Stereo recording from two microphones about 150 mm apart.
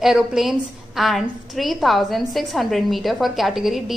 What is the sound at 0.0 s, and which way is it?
A woman's voice, 5° right (ahead or behind).